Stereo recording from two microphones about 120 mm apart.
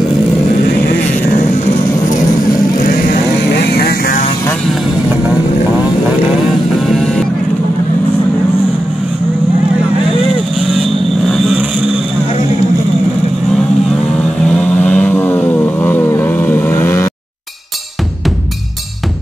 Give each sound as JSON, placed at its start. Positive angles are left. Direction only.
{"t": 10.6, "sound": "vehicle", "side_deg": 0}
{"t": 14.5, "sound": "vehicle", "side_deg": 10}